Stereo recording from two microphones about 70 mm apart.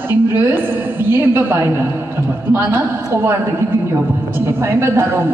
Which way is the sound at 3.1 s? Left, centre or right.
Right.